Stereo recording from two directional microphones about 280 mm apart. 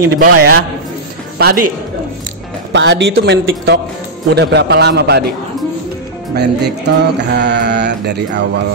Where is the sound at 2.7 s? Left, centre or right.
Right.